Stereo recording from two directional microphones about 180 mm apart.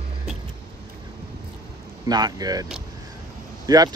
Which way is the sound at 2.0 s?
20° right (ahead or behind).